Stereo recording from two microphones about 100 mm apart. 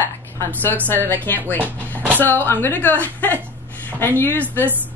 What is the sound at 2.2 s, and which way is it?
Speech, 20° left (ahead or behind).